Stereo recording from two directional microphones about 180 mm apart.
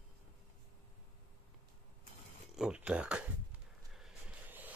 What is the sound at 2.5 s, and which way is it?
Speech, 5° right (ahead or behind).